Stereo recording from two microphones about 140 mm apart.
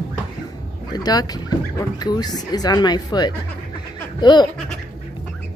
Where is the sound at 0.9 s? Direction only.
30° left (ahead or behind).